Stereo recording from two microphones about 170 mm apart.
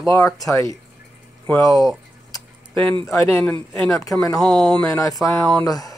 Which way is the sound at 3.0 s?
15° left (ahead or behind).